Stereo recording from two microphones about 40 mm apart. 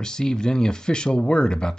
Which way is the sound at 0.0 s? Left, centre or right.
Centre.